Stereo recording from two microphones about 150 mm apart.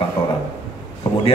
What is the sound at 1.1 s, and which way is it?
Speech, 30° left (ahead or behind).